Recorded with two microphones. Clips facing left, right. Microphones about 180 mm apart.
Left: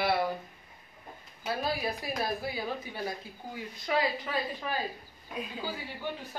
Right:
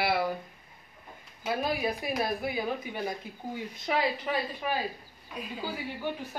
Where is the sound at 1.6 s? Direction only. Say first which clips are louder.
Right 2 dB; 20° right (ahead or behind).